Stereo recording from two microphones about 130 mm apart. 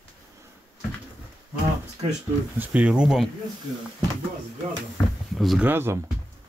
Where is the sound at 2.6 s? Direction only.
10° right (ahead or behind).